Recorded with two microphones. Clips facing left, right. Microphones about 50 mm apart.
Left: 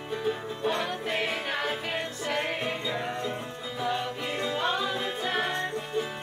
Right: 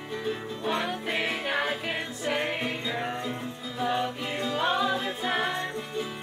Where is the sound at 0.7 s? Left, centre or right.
Centre.